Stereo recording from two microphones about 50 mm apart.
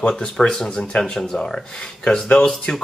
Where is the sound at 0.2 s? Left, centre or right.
Centre.